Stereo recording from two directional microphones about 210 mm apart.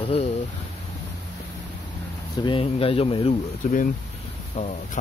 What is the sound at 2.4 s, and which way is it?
Speech, 25° left (ahead or behind).